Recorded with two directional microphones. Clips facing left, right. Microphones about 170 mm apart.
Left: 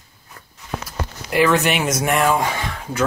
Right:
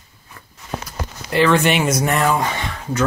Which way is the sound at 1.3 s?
5° left (ahead or behind).